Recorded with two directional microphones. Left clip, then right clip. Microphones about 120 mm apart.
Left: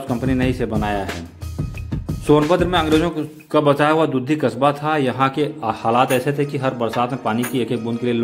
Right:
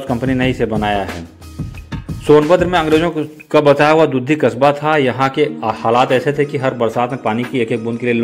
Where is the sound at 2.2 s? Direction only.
5° right (ahead or behind).